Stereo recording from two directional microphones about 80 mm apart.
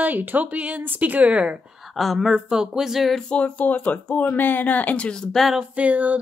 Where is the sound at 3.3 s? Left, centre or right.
Centre.